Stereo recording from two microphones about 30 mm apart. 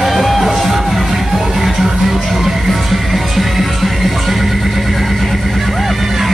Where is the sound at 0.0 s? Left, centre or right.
Centre.